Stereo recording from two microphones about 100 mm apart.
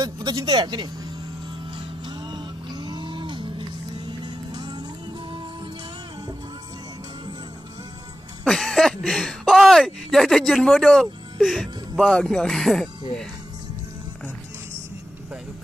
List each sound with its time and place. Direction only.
0.0 s speech: 40° right (ahead or behind)
2.0 s cattle: 50° right (ahead or behind)
8.5 s speech: centre (ahead or behind)